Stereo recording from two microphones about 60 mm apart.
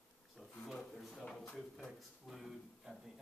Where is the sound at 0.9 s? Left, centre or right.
Centre.